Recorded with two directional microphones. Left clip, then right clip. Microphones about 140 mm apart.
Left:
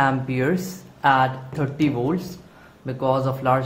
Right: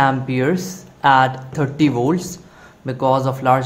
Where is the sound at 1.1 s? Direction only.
20° right (ahead or behind).